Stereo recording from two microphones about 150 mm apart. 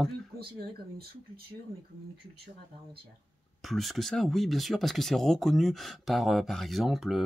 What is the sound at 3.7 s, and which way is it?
Speech, centre (ahead or behind).